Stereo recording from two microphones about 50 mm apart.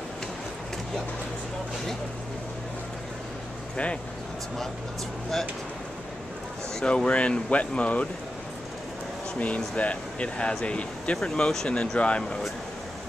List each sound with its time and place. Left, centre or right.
3.7 s speech: left
6.8 s speech: centre
9.4 s speech: left
11.1 s speech: centre